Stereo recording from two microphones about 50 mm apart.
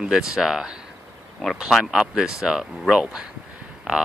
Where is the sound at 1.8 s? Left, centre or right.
Centre.